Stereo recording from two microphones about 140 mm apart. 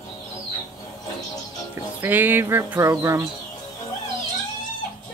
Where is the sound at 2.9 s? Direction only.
20° right (ahead or behind).